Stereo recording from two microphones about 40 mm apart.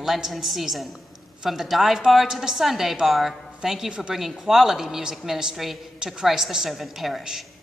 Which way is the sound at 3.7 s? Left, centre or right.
Centre.